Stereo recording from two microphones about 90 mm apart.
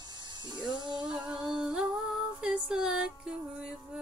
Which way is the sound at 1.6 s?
10° right (ahead or behind).